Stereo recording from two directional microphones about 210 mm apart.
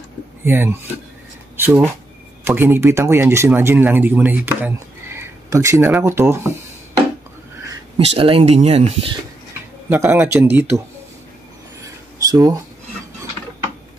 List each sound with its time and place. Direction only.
0.5 s speech: 10° right (ahead or behind)
8.0 s speech: 25° right (ahead or behind)
9.8 s speech: 10° right (ahead or behind)
12.2 s speech: 15° right (ahead or behind)